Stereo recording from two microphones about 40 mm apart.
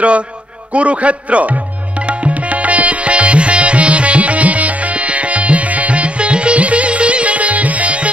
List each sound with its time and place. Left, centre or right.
0.7 s speech: right
2.0 s music: right